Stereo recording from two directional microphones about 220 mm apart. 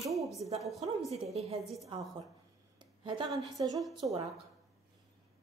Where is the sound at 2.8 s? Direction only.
20° right (ahead or behind).